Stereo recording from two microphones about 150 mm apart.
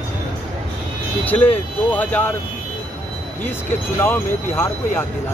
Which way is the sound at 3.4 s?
15° left (ahead or behind).